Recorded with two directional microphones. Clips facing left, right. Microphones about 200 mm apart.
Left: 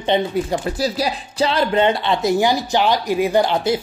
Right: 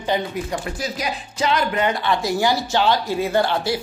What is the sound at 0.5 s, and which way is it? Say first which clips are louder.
Speech: left 6 dB; 35° left (ahead or behind).